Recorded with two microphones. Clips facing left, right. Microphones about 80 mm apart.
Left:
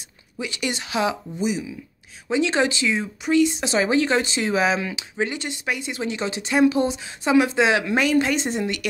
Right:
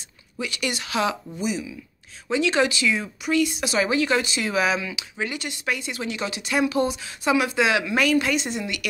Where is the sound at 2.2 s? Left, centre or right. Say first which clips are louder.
Left 1 dB; left.